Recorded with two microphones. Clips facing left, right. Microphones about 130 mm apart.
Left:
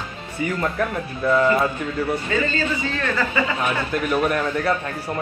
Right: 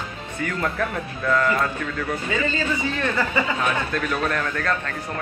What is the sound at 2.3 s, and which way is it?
Speech, 15° right (ahead or behind).